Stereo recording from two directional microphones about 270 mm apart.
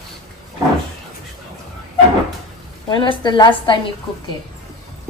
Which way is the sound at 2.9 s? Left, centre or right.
Centre.